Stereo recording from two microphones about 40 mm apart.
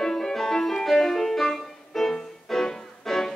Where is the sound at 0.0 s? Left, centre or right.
Centre.